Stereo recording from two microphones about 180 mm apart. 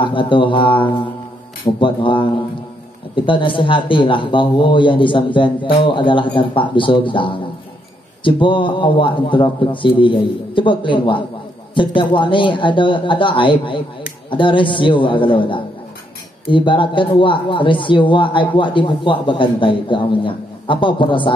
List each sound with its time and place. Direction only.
0.0 s speech: 25° left (ahead or behind)
3.3 s speech: 30° left (ahead or behind)